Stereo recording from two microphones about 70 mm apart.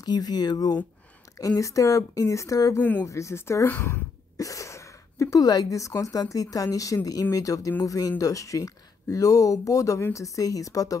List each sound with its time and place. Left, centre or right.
0.0 s speech: left
1.4 s speech: left
2.8 s speech: left
3.1 s speech: left
4.4 s speech: left